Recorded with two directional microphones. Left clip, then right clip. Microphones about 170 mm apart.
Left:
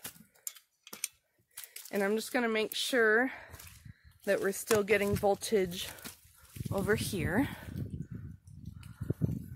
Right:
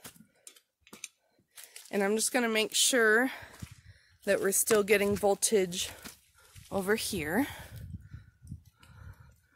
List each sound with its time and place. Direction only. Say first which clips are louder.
0.5 s typing: left 6 dB; 15° left (ahead or behind)
1.9 s speech: right 2 dB; 40° right (ahead or behind)
4.2 s speech: right 2 dB; 30° right (ahead or behind)
5.2 s speech: right 2 dB; 30° right (ahead or behind)